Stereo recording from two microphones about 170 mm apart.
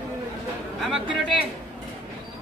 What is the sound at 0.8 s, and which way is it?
Chatter, centre (ahead or behind).